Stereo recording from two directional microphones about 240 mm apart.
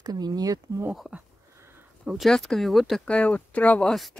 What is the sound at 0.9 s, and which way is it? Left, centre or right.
Speech, centre.